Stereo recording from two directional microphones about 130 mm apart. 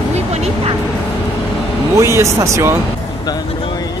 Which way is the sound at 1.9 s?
20° right (ahead or behind).